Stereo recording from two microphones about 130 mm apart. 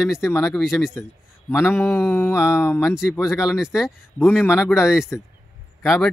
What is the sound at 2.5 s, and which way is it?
Speech, 20° left (ahead or behind).